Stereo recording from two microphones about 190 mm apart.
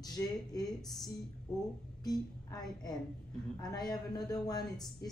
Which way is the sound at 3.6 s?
20° left (ahead or behind).